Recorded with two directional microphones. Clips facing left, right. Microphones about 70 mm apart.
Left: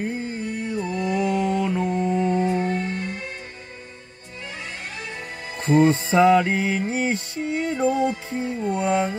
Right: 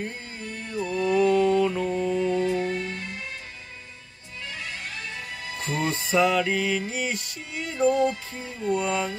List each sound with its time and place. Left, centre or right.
0.0 s music: centre
0.8 s mantra: centre; by 3.2 s left
5.5 s music: left